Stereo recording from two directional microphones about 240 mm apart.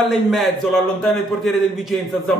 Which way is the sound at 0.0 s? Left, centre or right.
Centre.